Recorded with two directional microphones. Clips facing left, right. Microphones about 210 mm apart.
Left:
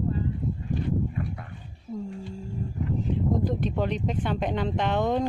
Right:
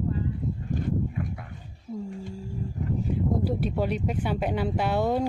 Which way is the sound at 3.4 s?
10° right (ahead or behind).